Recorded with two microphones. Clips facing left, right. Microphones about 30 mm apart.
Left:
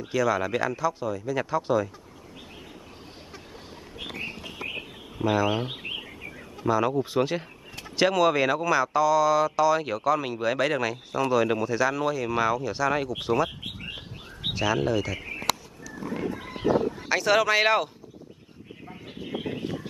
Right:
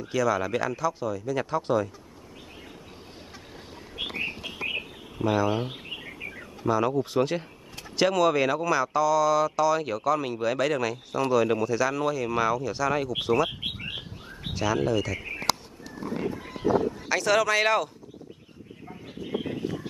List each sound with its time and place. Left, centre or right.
0.1 s speech: centre
1.3 s speech: centre
4.0 s bird: right
5.2 s speech: centre
6.7 s speech: centre
13.5 s a sound: right
14.5 s speech: centre
16.8 s speech: centre
18.8 s bird: centre
19.2 s a sound: centre